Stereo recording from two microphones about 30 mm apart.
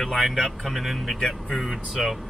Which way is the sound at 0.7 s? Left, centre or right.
Centre.